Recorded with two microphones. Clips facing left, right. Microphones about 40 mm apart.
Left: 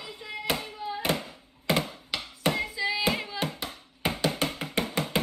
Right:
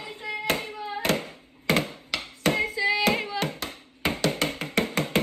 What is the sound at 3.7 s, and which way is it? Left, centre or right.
Music, right.